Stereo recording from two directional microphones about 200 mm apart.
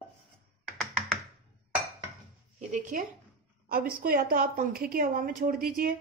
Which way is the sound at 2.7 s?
40° right (ahead or behind).